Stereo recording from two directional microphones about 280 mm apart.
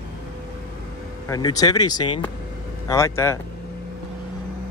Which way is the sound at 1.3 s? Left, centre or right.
Centre.